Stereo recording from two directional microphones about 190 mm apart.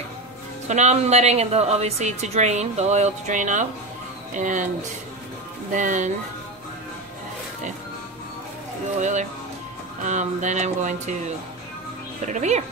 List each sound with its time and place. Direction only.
0.7 s a woman's voice: 35° right (ahead or behind)
5.7 s a woman's voice: 40° right (ahead or behind)
10.0 s a woman's voice: 40° right (ahead or behind)